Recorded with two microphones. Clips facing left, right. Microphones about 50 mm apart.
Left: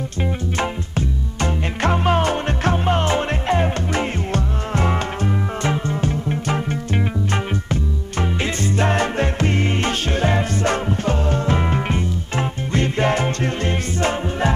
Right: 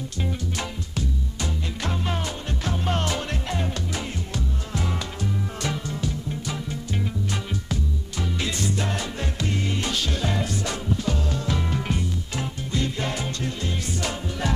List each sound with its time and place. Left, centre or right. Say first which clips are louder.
0.2 s music: left 7 dB; left
2.8 s music: left 7 dB; left